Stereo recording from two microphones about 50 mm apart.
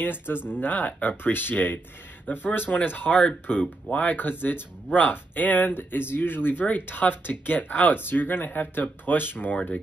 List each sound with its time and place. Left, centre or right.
0.0 s speech: left
3.1 s speech: left
3.9 s speech: left
7.9 s speech: left